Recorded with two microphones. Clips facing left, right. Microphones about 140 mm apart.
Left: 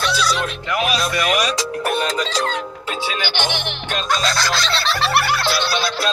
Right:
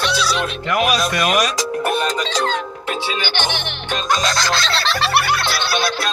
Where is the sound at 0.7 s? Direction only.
45° right (ahead or behind).